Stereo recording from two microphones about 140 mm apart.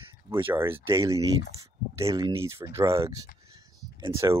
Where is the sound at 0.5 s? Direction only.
15° right (ahead or behind).